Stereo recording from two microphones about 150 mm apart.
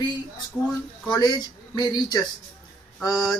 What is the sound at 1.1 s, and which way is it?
Speech, 25° left (ahead or behind).